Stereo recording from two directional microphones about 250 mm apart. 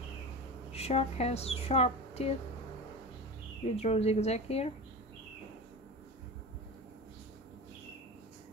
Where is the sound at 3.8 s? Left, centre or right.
Left.